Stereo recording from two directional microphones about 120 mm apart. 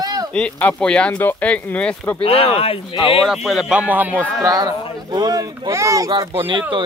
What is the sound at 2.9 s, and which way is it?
Speech, 45° left (ahead or behind).